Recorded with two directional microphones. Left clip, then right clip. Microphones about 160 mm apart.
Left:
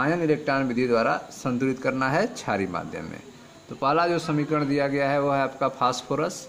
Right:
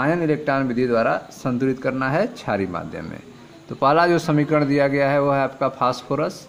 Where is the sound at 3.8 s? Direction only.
30° right (ahead or behind).